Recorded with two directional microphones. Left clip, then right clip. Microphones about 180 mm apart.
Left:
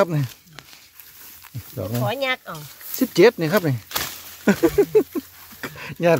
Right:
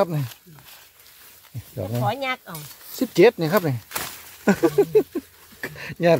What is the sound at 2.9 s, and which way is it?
Speech, 10° left (ahead or behind).